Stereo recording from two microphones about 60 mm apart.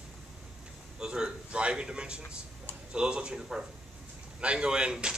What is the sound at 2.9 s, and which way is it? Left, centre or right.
Speech, centre.